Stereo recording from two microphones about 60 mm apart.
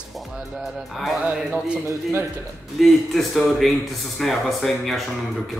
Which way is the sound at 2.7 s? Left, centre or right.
Centre.